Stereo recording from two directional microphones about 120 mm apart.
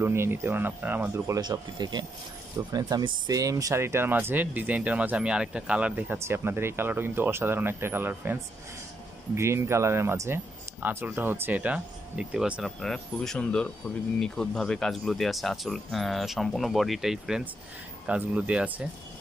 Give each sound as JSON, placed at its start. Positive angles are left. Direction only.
{"t": 0.0, "sound": "speech", "side_deg": -20}
{"t": 1.4, "sound": "speech", "side_deg": -35}
{"t": 12.8, "sound": "speech", "side_deg": 5}